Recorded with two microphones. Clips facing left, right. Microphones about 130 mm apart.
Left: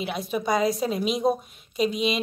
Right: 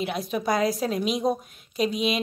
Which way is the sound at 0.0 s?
Centre (ahead or behind).